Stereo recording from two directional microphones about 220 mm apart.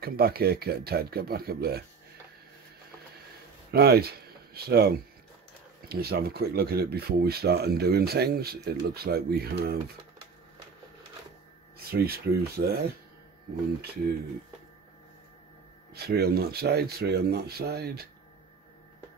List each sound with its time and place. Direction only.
0.0 s speech: 45° right (ahead or behind)
3.7 s speech: 45° right (ahead or behind)
11.9 s speech: 45° right (ahead or behind)
15.9 s speech: 45° right (ahead or behind)